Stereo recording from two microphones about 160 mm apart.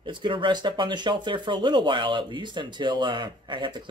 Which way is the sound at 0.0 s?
30° right (ahead or behind).